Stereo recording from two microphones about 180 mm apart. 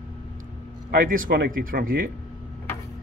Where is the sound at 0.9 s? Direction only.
50° right (ahead or behind).